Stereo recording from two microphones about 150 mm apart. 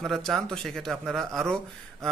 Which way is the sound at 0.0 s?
Centre (ahead or behind).